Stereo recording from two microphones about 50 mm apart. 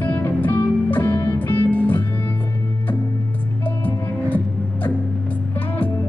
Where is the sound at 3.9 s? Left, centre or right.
Left.